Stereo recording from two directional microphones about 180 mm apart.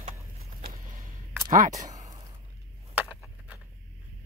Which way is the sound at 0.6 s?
50° right (ahead or behind).